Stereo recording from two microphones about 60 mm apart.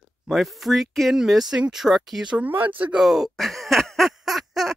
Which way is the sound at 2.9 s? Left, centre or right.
Centre.